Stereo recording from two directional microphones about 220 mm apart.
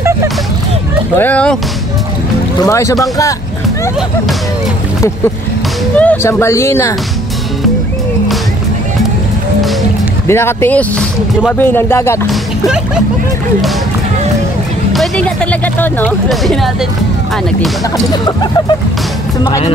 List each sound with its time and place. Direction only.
1.1 s speech: 5° left (ahead or behind)
2.6 s speech: 15° left (ahead or behind)
5.9 s speech: 10° left (ahead or behind)
10.2 s speech: 10° left (ahead or behind)
12.3 s speech: 5° right (ahead or behind)
14.9 s speech: centre (ahead or behind)
17.9 s speech: 20° left (ahead or behind)